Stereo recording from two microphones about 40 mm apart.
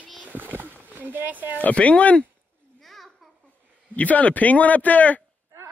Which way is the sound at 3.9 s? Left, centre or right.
Left.